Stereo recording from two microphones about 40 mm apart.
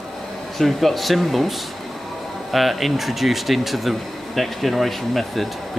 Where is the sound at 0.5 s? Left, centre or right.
Centre.